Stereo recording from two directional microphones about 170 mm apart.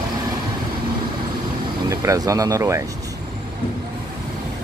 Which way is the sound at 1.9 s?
20° right (ahead or behind).